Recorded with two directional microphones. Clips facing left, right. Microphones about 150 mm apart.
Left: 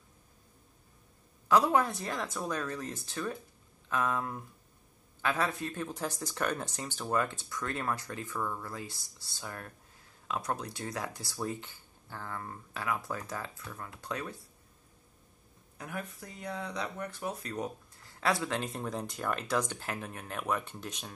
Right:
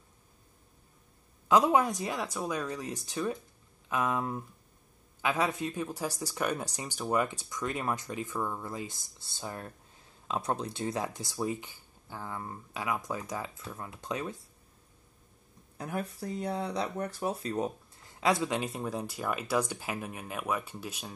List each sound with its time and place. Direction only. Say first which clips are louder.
1.5 s speech: right 2 dB; 15° right (ahead or behind)
15.8 s speech: right 5 dB; 35° right (ahead or behind); by 21.1 s 5° right (ahead or behind)